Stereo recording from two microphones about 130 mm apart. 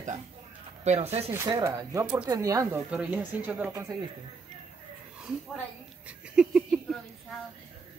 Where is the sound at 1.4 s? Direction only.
25° right (ahead or behind).